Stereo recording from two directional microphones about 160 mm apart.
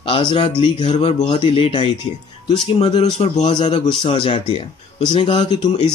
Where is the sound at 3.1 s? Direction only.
45° left (ahead or behind).